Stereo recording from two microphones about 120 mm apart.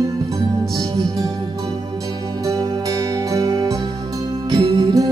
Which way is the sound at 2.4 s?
30° right (ahead or behind).